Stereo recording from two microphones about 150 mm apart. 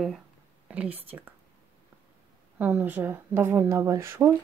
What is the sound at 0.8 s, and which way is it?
Speech, 40° right (ahead or behind).